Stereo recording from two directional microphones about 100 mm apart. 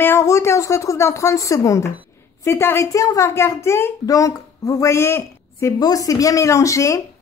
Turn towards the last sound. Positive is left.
turn(degrees=30)  # may be behind; listen again after turning